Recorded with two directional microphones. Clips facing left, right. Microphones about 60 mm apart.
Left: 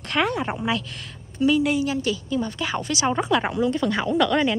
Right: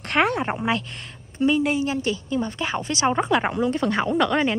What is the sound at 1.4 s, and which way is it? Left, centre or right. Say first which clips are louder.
A woman's voice: left 1 dB; right.